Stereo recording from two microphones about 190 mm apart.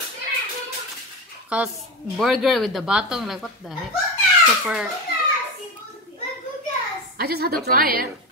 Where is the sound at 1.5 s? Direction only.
5° right (ahead or behind).